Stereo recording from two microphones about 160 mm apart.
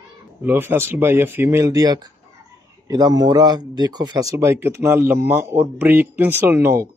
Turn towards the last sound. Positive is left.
turn(degrees=-15)  # may be behind; listen again after turning